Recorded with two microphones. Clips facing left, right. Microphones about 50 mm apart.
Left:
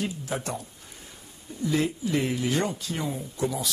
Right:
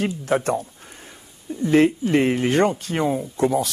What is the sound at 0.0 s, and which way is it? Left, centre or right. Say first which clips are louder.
Speech: right 9 dB; right.